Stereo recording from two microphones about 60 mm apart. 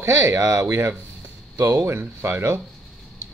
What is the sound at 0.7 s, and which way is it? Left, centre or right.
Speech, right.